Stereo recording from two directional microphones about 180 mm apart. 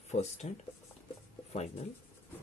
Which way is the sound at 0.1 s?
35° left (ahead or behind).